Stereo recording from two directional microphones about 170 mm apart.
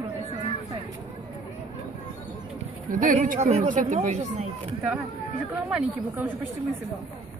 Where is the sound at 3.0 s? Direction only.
50° right (ahead or behind).